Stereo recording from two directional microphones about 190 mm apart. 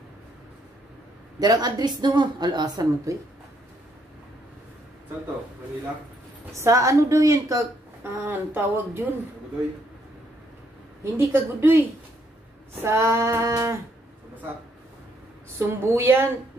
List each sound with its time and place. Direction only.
1.4 s a woman's voice: 20° right (ahead or behind)
6.5 s a woman's voice: 15° right (ahead or behind)
11.1 s a woman's voice: 15° right (ahead or behind)
12.8 s a woman's voice: 15° right (ahead or behind)
15.6 s a woman's voice: 15° right (ahead or behind)